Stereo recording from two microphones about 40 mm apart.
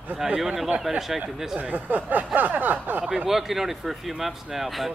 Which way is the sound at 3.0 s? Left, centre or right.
Centre.